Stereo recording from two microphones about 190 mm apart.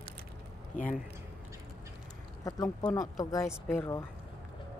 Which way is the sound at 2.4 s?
20° left (ahead or behind).